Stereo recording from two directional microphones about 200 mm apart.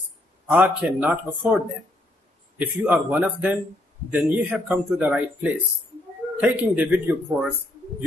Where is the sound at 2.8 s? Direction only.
5° right (ahead or behind).